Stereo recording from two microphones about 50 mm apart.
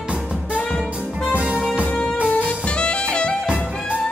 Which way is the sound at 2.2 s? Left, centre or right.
Left.